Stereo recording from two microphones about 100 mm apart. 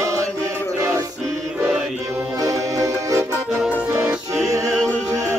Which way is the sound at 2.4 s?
35° right (ahead or behind).